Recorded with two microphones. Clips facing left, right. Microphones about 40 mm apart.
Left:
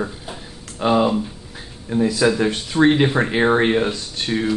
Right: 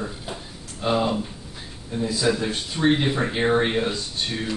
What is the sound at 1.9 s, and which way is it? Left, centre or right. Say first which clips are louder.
Speech: left 6 dB; left.